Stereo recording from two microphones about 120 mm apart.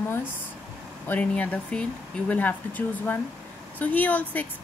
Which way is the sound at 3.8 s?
15° left (ahead or behind).